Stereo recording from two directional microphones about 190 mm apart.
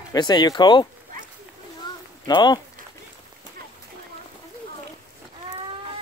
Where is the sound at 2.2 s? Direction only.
20° left (ahead or behind).